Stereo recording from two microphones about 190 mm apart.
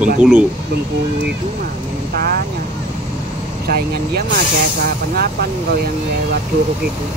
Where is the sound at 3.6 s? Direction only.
55° right (ahead or behind).